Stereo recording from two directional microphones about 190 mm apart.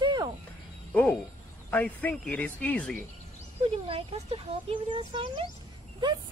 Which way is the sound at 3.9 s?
30° right (ahead or behind).